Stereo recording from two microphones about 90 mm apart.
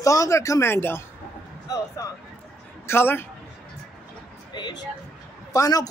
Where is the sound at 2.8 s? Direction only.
25° left (ahead or behind).